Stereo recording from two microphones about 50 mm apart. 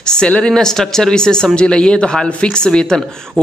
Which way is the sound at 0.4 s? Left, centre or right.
Centre.